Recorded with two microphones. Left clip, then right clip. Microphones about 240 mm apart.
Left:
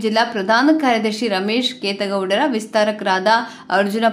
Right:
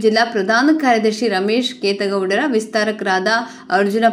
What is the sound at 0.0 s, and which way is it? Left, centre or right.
A woman's voice, centre.